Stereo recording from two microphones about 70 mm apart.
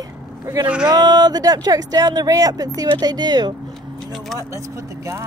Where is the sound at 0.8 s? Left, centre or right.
Right.